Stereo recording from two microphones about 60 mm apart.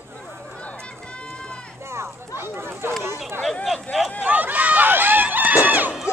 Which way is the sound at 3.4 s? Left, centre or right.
Centre.